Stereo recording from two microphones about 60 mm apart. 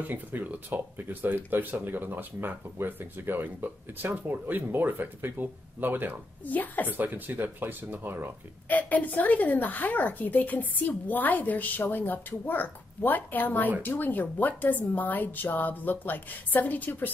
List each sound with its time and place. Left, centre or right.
0.0 s speech: right
6.4 s a woman's voice: left
6.9 s speech: right
8.6 s a woman's voice: left